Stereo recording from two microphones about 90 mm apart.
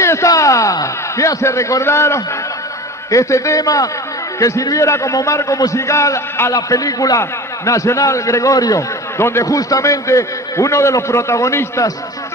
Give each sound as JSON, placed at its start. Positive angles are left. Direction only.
{"t": 0.0, "sound": "a sound", "side_deg": 35}
{"t": 3.1, "sound": "a man's voice", "side_deg": 35}
{"t": 6.5, "sound": "a man's voice", "side_deg": 40}